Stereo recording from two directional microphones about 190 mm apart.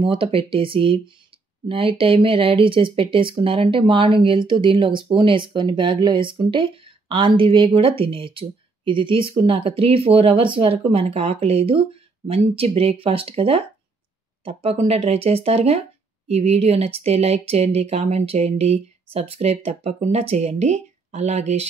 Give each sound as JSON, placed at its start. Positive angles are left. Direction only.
{"t": 0.0, "sound": "speech", "side_deg": -30}